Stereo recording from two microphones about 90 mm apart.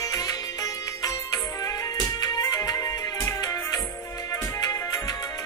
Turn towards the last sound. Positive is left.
turn(degrees=45)  # may be behind; listen again after turning